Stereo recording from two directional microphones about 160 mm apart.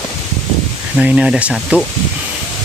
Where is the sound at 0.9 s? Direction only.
5° right (ahead or behind).